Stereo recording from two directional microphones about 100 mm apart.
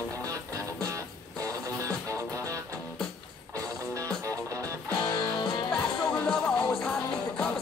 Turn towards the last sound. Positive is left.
turn(degrees=5)  # may be behind; listen again after turning